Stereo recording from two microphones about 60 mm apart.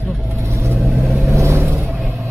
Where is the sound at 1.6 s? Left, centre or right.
Right.